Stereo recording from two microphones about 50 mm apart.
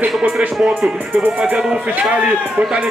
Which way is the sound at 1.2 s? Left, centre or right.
Right.